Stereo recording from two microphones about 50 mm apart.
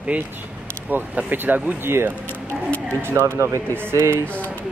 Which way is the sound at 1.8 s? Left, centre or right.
Right.